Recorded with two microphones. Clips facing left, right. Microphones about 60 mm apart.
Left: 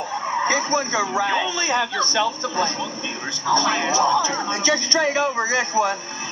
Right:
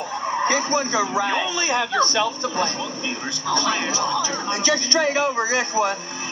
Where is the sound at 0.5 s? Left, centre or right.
Left.